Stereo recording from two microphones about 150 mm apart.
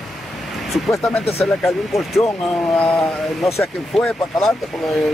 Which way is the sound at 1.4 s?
Centre (ahead or behind).